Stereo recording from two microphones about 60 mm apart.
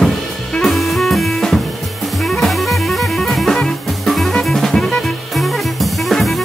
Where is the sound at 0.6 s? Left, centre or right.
Centre.